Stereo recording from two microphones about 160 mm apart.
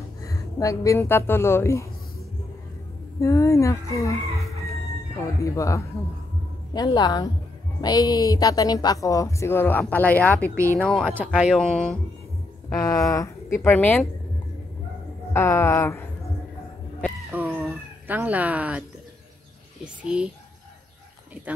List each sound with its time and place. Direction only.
0.2 s speech: 20° left (ahead or behind)
3.2 s a woman's voice: 20° left (ahead or behind)
10.5 s speech: 15° right (ahead or behind)
10.8 s speech: 5° left (ahead or behind)
11.1 s speech: 5° right (ahead or behind)
11.6 s speech: 5° left (ahead or behind)
12.6 s speech: 20° left (ahead or behind)
15.3 s speech: 15° left (ahead or behind)
17.3 s a sound: 10° right (ahead or behind)
19.8 s speech: 5° right (ahead or behind)